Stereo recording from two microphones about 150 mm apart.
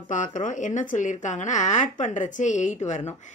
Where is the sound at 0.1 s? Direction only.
60° left (ahead or behind).